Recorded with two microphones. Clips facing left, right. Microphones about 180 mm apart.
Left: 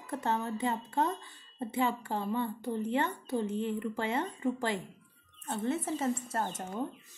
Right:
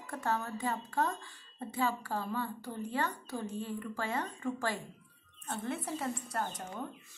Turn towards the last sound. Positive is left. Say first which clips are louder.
# left 3 dB
turn(degrees=25)  # may be behind; listen again after turning